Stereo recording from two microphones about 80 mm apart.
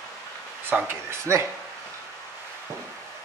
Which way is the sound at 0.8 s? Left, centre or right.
Right.